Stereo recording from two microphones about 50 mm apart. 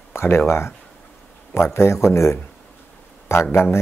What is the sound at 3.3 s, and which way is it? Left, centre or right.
Speech, left.